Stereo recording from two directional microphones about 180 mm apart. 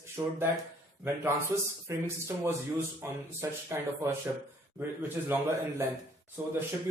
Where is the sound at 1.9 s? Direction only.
15° right (ahead or behind).